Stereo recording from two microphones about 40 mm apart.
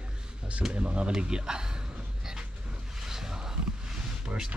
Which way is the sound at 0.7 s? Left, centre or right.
Right.